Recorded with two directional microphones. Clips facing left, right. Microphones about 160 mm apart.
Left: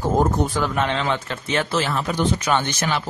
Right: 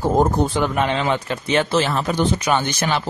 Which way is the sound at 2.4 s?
10° right (ahead or behind).